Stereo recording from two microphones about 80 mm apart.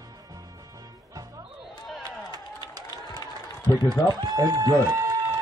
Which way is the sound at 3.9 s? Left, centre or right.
Right.